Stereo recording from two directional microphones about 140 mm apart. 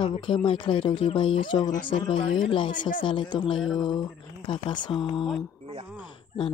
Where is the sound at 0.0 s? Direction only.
35° left (ahead or behind).